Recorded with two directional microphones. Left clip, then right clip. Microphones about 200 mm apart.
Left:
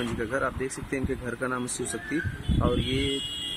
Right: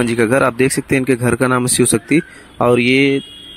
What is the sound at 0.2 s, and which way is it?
Speech, 50° right (ahead or behind).